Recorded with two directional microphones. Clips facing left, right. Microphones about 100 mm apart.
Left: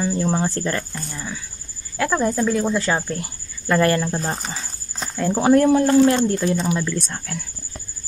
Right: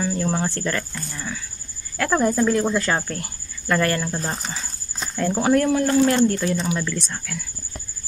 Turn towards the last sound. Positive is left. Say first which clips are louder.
# left 2 dB
turn(degrees=45)  # may be behind; listen again after turning